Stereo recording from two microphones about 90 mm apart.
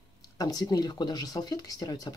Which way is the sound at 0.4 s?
45° left (ahead or behind).